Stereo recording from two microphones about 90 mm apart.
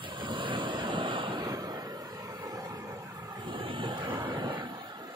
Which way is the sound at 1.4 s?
45° right (ahead or behind).